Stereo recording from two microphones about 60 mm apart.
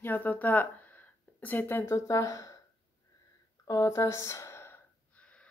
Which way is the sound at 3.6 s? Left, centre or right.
Left.